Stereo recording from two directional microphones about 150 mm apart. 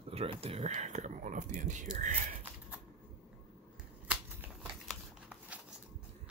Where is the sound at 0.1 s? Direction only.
40° right (ahead or behind); by 2.1 s 55° right (ahead or behind).